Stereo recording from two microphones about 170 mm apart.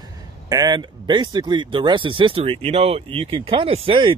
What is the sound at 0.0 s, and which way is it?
Speech, 25° right (ahead or behind).